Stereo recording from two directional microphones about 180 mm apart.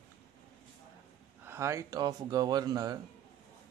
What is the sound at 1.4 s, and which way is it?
Speech, 15° right (ahead or behind).